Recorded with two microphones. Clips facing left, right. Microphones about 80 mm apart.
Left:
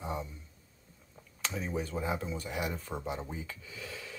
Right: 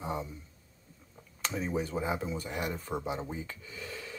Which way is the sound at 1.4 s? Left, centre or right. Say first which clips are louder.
Right 3 dB; centre.